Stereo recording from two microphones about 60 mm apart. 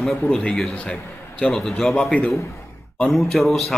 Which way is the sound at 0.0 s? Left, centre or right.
Centre.